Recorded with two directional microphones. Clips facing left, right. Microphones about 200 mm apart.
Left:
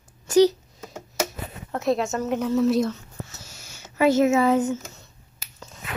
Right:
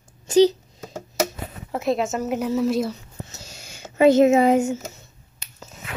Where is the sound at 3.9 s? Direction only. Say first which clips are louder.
Right 4 dB; 20° right (ahead or behind).